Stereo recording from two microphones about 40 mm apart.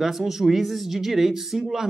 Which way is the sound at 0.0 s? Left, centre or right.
Centre.